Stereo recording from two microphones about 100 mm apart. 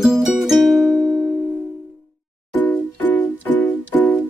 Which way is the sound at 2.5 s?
15° left (ahead or behind).